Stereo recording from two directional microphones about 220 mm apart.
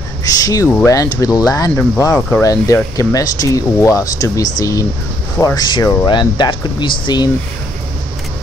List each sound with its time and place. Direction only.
0.2 s speech: 15° left (ahead or behind)